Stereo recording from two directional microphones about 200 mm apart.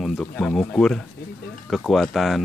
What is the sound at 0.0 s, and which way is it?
Speech, centre (ahead or behind).